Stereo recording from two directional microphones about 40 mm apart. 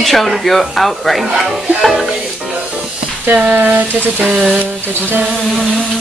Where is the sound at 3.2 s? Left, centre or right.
Right.